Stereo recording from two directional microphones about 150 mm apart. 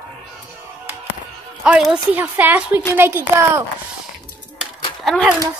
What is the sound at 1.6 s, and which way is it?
A woman's voice, 5° right (ahead or behind).